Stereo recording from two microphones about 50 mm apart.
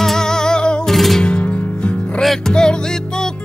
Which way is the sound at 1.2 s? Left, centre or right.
Centre.